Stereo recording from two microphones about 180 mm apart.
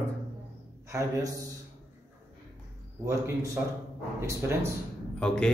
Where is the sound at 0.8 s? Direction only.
15° right (ahead or behind).